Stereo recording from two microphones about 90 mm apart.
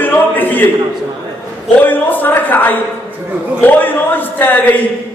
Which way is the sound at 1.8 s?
20° left (ahead or behind).